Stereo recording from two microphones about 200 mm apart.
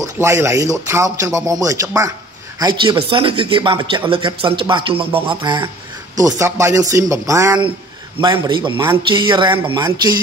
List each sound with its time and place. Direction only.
0.0 s speech: 15° right (ahead or behind)